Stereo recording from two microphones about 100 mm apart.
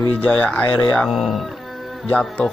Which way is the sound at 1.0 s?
Centre (ahead or behind).